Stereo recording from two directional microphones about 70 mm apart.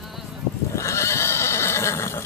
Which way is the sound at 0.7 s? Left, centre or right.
Left.